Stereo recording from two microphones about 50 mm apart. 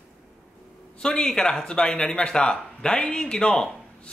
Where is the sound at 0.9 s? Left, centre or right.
Centre.